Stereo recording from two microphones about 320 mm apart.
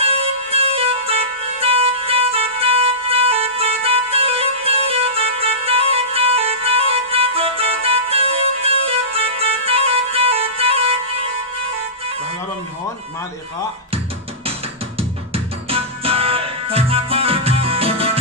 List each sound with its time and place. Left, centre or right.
0.0 s music: centre
15.0 s music: centre